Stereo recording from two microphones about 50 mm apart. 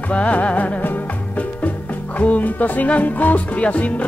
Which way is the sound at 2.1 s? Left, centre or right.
Left.